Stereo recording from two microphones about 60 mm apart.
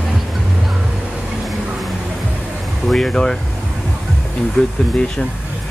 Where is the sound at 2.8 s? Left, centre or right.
Centre.